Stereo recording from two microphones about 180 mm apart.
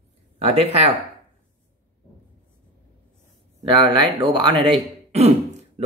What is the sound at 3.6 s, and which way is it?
Speech, 25° right (ahead or behind).